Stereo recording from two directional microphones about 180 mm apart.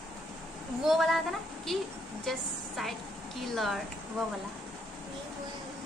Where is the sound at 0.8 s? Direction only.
Centre (ahead or behind).